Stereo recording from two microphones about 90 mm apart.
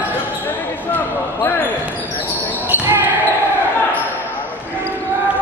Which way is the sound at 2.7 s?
25° right (ahead or behind).